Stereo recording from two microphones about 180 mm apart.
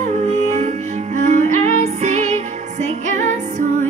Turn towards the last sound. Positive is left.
turn(degrees=-40)  # may be behind; listen again after turning